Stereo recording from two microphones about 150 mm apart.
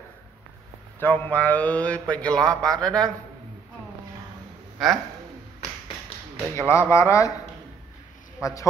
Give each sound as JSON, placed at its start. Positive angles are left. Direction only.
{"t": 0.9, "sound": "a man's voice", "side_deg": 10}
{"t": 4.7, "sound": "a man's voice", "side_deg": 0}
{"t": 6.5, "sound": "speech", "side_deg": 20}
{"t": 8.4, "sound": "speech", "side_deg": 20}